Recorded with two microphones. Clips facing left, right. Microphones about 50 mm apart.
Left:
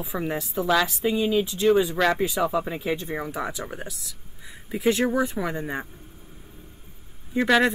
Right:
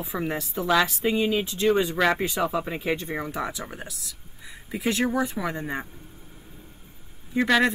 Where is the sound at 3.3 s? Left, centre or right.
Centre.